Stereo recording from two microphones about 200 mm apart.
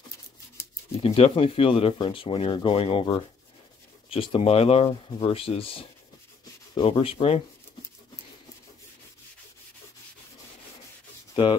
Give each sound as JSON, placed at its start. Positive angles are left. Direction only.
{"t": 1.0, "sound": "speech", "side_deg": 30}